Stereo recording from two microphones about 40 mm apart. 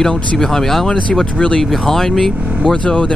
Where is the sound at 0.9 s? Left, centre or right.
Centre.